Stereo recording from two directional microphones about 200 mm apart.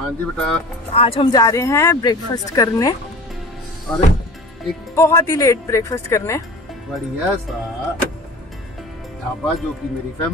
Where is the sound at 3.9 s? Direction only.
Centre (ahead or behind).